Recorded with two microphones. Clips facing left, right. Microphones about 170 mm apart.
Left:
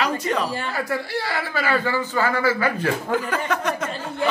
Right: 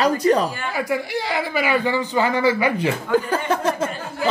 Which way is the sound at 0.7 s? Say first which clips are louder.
Right 5 dB; 15° right (ahead or behind).